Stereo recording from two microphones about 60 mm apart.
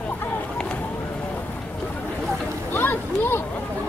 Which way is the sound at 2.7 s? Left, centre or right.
Left.